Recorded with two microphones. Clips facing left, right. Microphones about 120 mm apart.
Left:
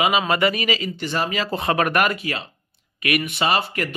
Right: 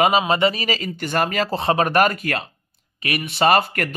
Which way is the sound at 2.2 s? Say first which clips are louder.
Right 3 dB; 50° right (ahead or behind).